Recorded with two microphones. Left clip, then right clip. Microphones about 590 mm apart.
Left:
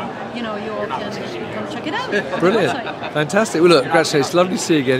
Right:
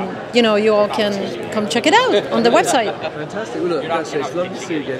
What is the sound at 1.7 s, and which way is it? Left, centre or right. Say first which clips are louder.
Speech: right 13 dB; right.